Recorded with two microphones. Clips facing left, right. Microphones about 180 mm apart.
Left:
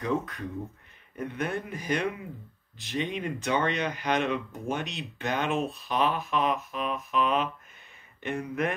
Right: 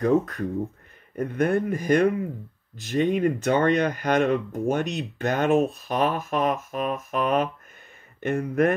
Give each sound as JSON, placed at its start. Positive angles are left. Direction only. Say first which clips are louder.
{"t": 0.0, "sound": "speech", "louder": "right 8 dB", "side_deg": -45}